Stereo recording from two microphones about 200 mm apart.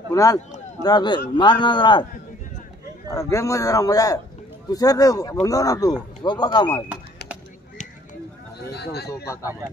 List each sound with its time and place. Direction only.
0.1 s a man's voice: 15° left (ahead or behind)
3.1 s a man's voice: 15° left (ahead or behind)
8.7 s speech: 55° left (ahead or behind)
9.2 s speech: 15° left (ahead or behind)